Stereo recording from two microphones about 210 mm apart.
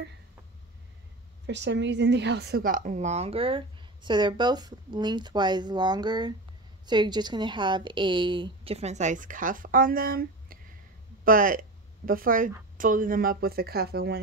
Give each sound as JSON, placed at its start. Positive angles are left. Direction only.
{"t": 1.4, "sound": "a woman's voice", "side_deg": -55}